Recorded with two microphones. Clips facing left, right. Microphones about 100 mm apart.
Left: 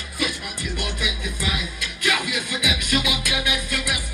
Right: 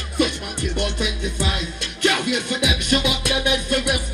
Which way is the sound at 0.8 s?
30° right (ahead or behind).